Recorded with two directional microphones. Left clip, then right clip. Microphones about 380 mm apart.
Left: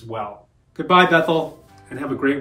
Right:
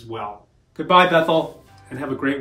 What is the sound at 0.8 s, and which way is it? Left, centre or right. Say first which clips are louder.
Speech: even; centre.